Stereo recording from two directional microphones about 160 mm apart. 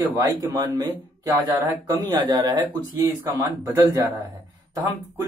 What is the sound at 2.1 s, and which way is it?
Speech, 25° right (ahead or behind).